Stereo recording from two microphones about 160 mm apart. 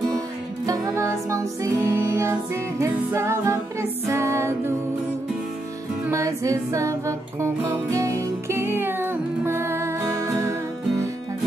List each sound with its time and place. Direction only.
0.7 s music: 15° right (ahead or behind)
6.0 s music: 20° right (ahead or behind)